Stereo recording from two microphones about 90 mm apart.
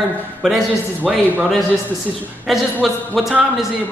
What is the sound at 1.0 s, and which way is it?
Speech, 20° right (ahead or behind).